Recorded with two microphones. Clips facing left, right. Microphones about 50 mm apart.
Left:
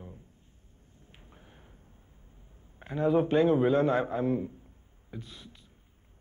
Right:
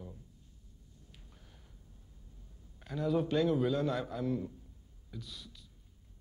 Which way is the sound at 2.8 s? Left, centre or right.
Left.